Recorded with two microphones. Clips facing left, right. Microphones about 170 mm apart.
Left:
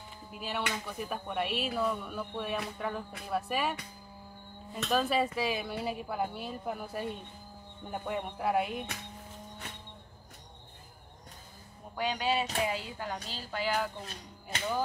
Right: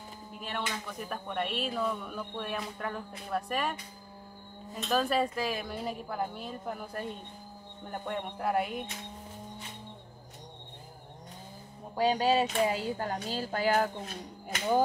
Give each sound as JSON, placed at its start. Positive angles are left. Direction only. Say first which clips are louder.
{"t": 0.4, "sound": "speech", "louder": "left 1 dB", "side_deg": 5}
{"t": 4.8, "sound": "speech", "louder": "right 1 dB", "side_deg": 0}
{"t": 11.9, "sound": "speech", "louder": "right 5 dB", "side_deg": -35}